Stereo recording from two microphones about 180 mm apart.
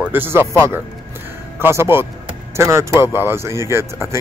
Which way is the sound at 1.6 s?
15° right (ahead or behind).